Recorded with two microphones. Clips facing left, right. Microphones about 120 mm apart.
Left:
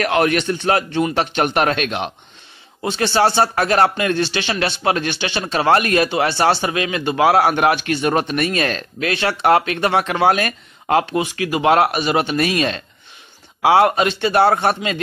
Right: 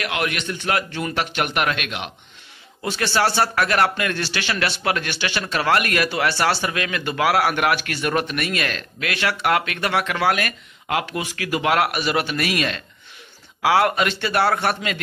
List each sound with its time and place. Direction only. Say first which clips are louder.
0.0 s a man's voice: left 8 dB; 40° left (ahead or behind)
2.8 s speech: left 4 dB; 25° left (ahead or behind)